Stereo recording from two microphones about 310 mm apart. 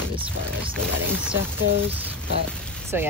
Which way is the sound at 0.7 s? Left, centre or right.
Centre.